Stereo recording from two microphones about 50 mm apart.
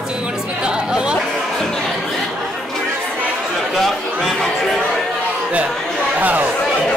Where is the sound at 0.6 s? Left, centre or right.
Centre.